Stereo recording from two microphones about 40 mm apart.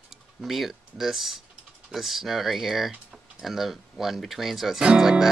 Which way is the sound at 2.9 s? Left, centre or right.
Right.